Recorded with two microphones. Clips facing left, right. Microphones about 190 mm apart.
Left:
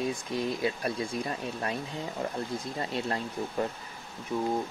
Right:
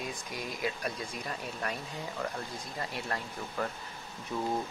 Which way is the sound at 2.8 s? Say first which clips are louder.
Left 4 dB; 25° left (ahead or behind).